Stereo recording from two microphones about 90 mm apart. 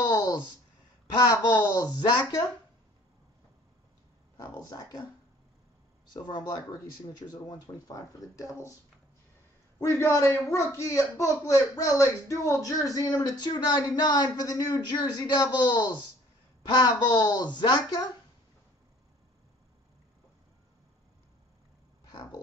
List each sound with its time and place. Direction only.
0.0 s a sound: 50° left (ahead or behind)
1.0 s a woman's voice: 50° left (ahead or behind)
2.0 s speech: 55° left (ahead or behind)
4.4 s speech: 45° left (ahead or behind)
6.1 s speech: 50° left (ahead or behind)
9.8 s speech: 30° left (ahead or behind)
13.2 s speech: 50° left (ahead or behind)